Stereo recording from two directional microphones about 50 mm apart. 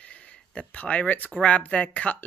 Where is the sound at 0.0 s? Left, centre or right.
Left.